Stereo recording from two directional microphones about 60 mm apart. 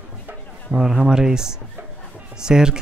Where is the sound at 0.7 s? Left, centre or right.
Centre.